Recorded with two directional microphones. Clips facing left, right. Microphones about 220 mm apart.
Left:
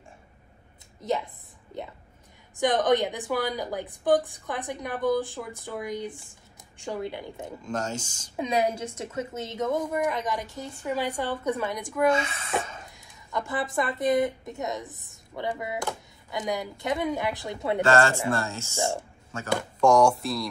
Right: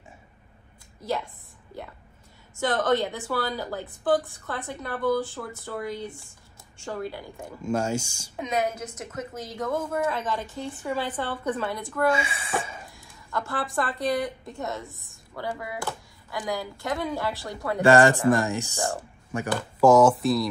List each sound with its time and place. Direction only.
1.7 s a woman's voice: 20° left (ahead or behind)
7.6 s speech: 10° right (ahead or behind)
8.4 s a woman's voice: 30° left (ahead or behind); by 12.1 s 15° left (ahead or behind)
12.1 s speech: 10° right (ahead or behind)
12.8 s speech: 20° left (ahead or behind)
17.8 s speech: 15° right (ahead or behind)
18.8 s a woman's voice: 15° left (ahead or behind)
19.3 s speech: 15° right (ahead or behind)
19.8 s speech: 5° right (ahead or behind)